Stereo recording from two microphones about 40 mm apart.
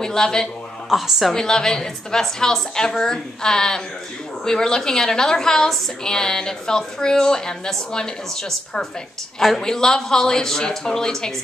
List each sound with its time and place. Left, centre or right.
0.0 s a woman's voice: centre
0.8 s a woman's voice: centre
1.3 s a woman's voice: centre